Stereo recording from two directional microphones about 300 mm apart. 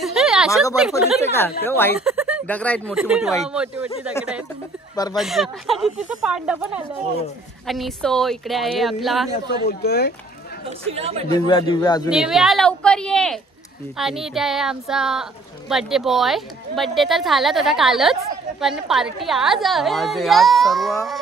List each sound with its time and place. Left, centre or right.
0.0 s a sound: centre
0.7 s a woman's voice: centre
2.0 s a woman's voice: centre
5.1 s a woman's voice: centre
9.5 s speech: left
10.9 s speech: centre
11.4 s speech: centre
12.1 s a woman's voice: centre